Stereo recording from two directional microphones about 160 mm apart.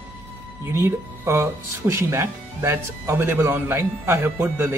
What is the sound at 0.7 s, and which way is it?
Speech, 15° right (ahead or behind).